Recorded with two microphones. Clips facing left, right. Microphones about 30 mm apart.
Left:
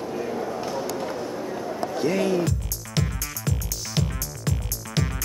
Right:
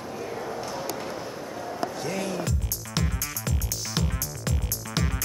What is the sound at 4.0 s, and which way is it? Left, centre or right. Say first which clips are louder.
Music: left 3 dB; centre.